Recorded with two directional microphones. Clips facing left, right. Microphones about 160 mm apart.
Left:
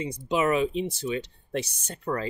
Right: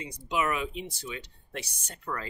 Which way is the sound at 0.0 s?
25° left (ahead or behind).